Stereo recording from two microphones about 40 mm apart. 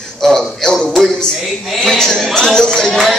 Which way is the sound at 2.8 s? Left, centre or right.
Centre.